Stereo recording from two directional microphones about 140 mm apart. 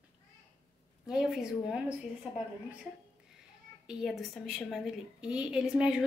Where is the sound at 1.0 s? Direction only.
5° right (ahead or behind).